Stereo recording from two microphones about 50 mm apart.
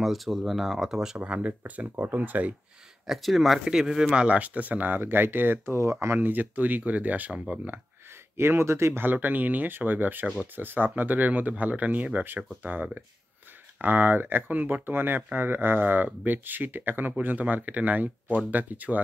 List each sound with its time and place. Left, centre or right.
0.0 s speech: centre
1.1 s speech: right
1.8 s speech: right
3.1 s speech: centre
3.6 s a man's voice: centre
4.1 s speech: right
5.8 s speech: right
6.1 s speech: right
7.3 s speech: right
8.4 s speech: right
9.0 s speech: right